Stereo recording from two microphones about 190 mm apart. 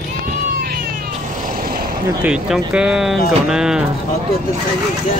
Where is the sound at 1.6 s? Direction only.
50° right (ahead or behind).